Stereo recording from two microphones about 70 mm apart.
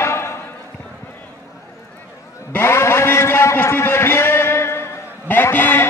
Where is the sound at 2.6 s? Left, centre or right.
Left.